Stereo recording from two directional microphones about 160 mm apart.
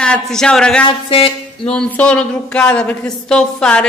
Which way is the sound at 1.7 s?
10° left (ahead or behind).